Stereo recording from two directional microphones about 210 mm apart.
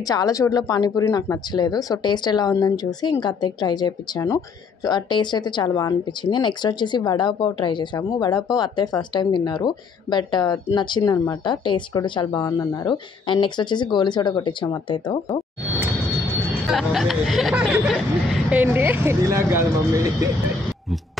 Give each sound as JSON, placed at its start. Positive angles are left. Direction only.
{"t": 0.1, "sound": "speech", "side_deg": 15}
{"t": 16.6, "sound": "snicker", "side_deg": 0}